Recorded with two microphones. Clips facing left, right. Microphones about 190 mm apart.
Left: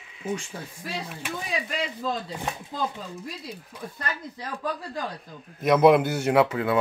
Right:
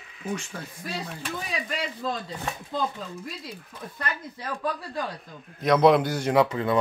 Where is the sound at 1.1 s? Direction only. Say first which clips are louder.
Left 1 dB; 10° left (ahead or behind).